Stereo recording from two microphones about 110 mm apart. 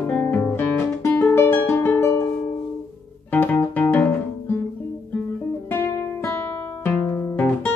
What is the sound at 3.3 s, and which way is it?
Music, 15° left (ahead or behind).